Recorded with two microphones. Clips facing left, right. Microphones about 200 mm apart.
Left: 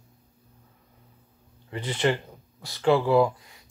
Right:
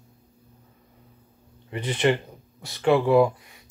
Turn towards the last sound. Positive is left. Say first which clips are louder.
# right 2 dB
turn(degrees=-20)  # may be behind; listen again after turning